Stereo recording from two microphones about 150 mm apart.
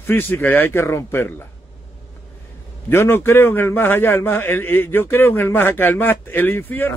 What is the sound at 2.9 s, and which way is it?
Speech, 15° left (ahead or behind).